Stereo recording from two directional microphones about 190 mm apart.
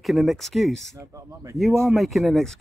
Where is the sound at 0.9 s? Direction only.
15° right (ahead or behind).